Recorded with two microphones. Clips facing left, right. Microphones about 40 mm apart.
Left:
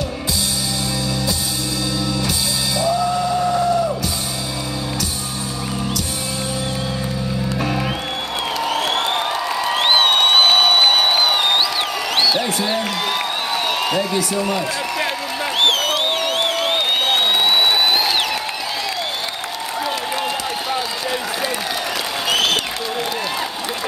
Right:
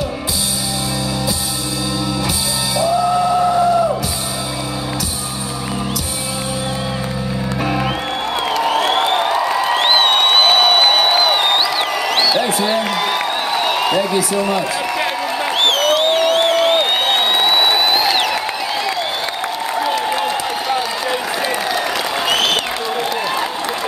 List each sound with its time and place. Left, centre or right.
2.8 s music: centre
7.6 s music: centre
9.8 s a sound: centre
15.6 s crowd: centre
19.8 s applause: centre
22.3 s applause: centre